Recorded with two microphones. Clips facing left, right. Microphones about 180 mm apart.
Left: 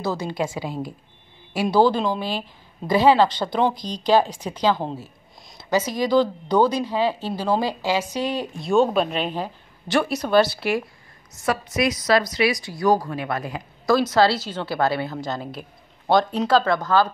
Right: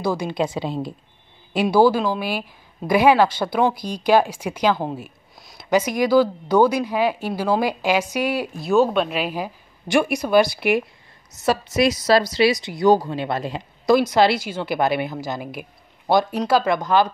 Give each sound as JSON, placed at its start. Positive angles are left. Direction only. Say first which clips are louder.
{"t": 0.0, "sound": "a woman's voice", "louder": "right 3 dB", "side_deg": -15}
{"t": 1.5, "sound": "a woman's voice", "louder": "right 2 dB", "side_deg": -15}
{"t": 11.3, "sound": "a woman's voice", "louder": "right 3 dB", "side_deg": -30}